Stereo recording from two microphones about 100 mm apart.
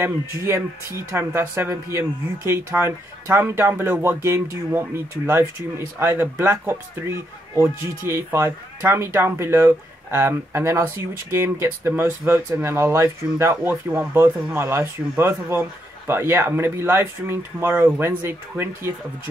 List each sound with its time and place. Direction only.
1.1 s speech: 25° right (ahead or behind)